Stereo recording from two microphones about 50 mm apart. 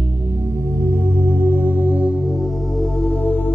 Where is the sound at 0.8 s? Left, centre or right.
Right.